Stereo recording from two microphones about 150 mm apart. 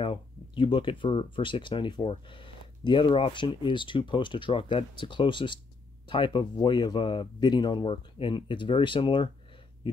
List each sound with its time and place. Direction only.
0.0 s speech: 35° left (ahead or behind)